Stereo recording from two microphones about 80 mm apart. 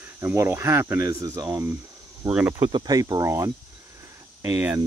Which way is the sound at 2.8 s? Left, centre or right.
Right.